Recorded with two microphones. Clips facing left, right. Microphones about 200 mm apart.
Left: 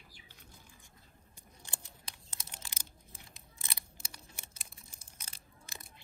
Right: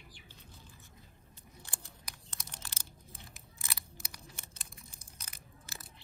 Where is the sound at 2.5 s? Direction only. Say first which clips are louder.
Right 1 dB; 10° left (ahead or behind).